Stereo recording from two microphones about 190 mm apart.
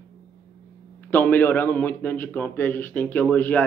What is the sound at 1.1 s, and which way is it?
Speech, 10° left (ahead or behind).